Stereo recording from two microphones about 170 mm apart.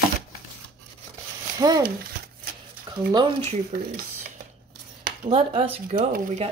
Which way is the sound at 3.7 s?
70° right (ahead or behind).